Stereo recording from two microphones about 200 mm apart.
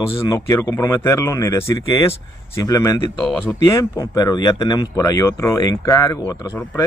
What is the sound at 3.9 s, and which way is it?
Speech, 20° left (ahead or behind).